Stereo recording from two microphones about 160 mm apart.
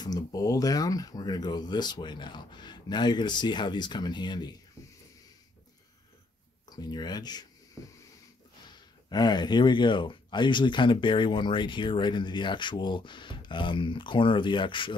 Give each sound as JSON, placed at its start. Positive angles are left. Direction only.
{"t": 0.0, "sound": "speech", "side_deg": 25}
{"t": 6.7, "sound": "speech", "side_deg": 25}
{"t": 8.6, "sound": "speech", "side_deg": 25}